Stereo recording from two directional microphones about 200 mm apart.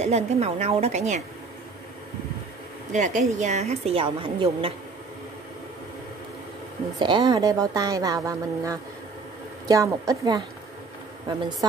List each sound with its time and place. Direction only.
0.0 s a woman's voice: 35° right (ahead or behind)
2.9 s a woman's voice: 40° right (ahead or behind)
7.0 s speech: 20° right (ahead or behind)